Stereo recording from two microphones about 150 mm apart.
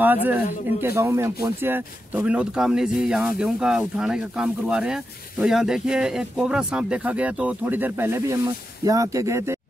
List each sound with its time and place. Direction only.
0.0 s a man's voice: 10° right (ahead or behind)